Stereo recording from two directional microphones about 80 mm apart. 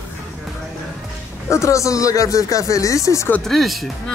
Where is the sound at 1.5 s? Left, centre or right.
Left.